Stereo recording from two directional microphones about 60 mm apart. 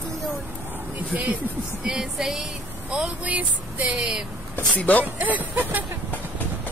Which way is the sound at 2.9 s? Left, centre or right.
Right.